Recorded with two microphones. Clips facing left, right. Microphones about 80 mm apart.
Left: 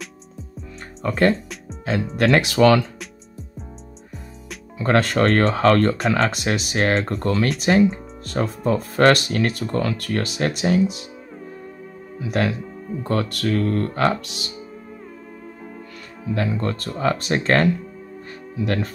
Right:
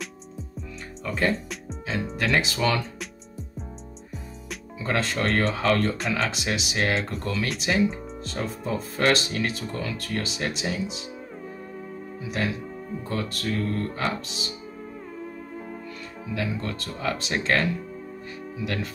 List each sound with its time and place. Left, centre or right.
0.0 s music: centre
1.0 s speech: left
4.7 s speech: left
12.2 s speech: left
16.3 s speech: left